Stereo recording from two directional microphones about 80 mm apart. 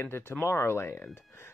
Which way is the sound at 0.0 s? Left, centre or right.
Left.